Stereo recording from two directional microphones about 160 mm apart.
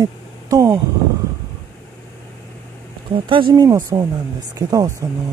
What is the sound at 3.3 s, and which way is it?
Speech, 30° right (ahead or behind).